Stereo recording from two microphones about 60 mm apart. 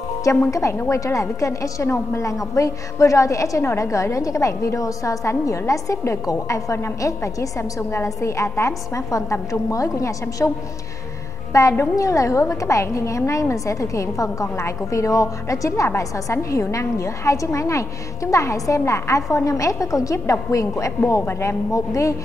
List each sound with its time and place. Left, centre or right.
0.5 s a woman's voice: left
10.4 s a woman's voice: left
11.8 s a woman's voice: left
21.7 s a woman's voice: left